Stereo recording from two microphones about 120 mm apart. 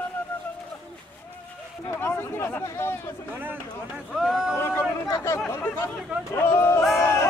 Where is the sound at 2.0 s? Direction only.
20° left (ahead or behind).